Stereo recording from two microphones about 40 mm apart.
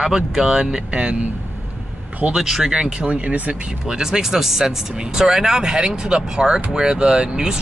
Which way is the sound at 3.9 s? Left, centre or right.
Centre.